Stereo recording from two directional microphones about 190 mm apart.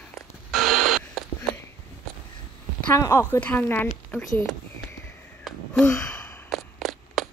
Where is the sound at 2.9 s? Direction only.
15° left (ahead or behind).